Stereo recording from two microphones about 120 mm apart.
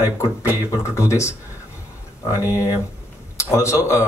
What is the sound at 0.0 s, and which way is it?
A man's voice, 25° left (ahead or behind).